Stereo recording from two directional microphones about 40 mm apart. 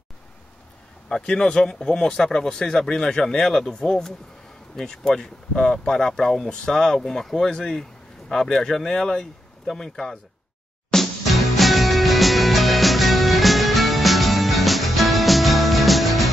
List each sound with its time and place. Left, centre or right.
1.0 s speech: centre
10.9 s music: centre